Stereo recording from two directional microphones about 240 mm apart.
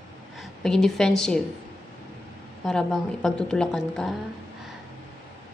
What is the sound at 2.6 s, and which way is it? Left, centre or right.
A woman's voice, centre.